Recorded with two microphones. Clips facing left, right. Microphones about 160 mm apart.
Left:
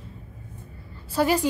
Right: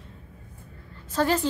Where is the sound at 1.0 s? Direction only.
10° left (ahead or behind).